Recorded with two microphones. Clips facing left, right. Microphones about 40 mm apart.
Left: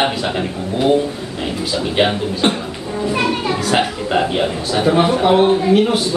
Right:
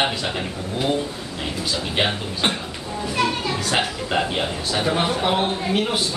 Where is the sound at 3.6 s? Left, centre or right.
Centre.